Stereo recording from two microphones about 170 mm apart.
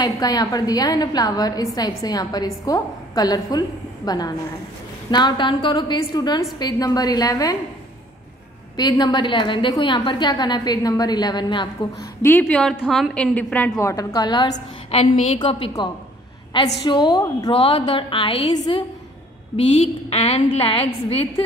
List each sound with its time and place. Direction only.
0.0 s a woman's voice: 25° left (ahead or behind)
8.7 s a woman's voice: 25° left (ahead or behind)
12.2 s a woman's voice: 10° left (ahead or behind)
13.7 s a woman's voice: 20° left (ahead or behind); by 15.3 s 40° left (ahead or behind)
15.3 s a woman's voice: 25° left (ahead or behind)